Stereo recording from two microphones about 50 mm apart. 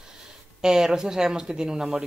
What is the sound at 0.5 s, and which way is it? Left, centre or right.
Speech, centre.